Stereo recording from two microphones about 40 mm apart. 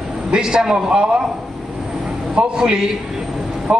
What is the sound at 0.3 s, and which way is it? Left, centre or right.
Speech, centre.